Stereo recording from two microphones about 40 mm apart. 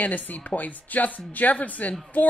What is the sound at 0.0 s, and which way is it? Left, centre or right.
Speech, left.